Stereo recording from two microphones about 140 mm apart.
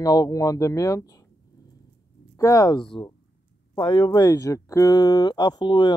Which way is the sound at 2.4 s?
25° left (ahead or behind).